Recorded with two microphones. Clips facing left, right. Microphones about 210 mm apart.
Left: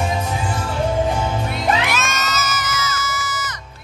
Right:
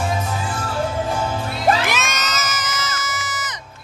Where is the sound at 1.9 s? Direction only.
20° right (ahead or behind).